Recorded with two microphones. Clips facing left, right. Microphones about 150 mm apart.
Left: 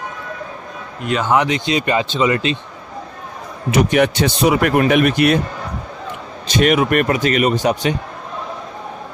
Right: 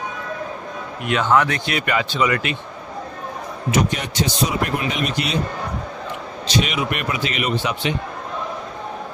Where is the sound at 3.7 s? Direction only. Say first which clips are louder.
Left 7 dB; 65° left (ahead or behind).